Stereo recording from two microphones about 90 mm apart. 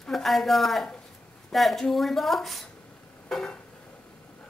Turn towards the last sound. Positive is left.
turn(degrees=5)  # may be behind; listen again after turning